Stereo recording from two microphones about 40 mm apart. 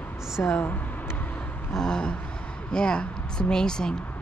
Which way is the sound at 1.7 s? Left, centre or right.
Centre.